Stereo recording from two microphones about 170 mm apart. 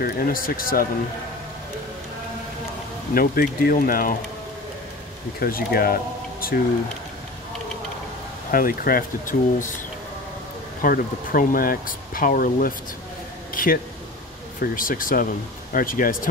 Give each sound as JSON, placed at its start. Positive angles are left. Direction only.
{"t": 0.0, "sound": "speech", "side_deg": 55}
{"t": 3.2, "sound": "speech", "side_deg": 60}
{"t": 5.4, "sound": "speech", "side_deg": 60}
{"t": 8.5, "sound": "speech", "side_deg": 55}
{"t": 10.8, "sound": "speech", "side_deg": 55}
{"t": 13.5, "sound": "a sound", "side_deg": 55}
{"t": 14.6, "sound": "speech", "side_deg": 55}